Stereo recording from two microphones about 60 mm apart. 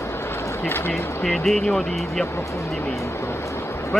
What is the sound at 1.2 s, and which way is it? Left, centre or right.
Speech, centre.